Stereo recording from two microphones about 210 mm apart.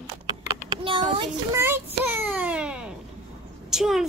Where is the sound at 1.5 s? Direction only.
10° right (ahead or behind).